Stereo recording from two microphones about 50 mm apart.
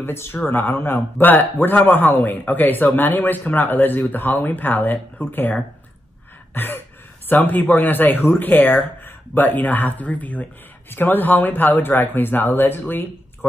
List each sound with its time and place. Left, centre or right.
0.0 s a man's voice: left
6.5 s a sound: left
7.2 s speech: left